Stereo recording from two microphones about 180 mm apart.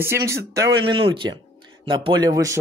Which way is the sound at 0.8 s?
30° right (ahead or behind).